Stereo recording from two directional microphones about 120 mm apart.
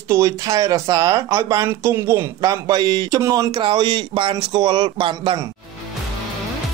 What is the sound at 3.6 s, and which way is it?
Speech, 40° right (ahead or behind).